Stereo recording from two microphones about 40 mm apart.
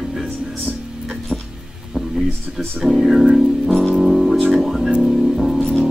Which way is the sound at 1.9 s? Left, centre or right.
Right.